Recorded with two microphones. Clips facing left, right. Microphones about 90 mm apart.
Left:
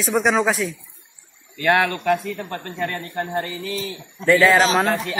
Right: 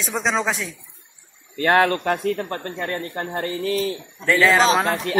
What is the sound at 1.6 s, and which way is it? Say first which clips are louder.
A man's voice: right 1 dB; 35° right (ahead or behind).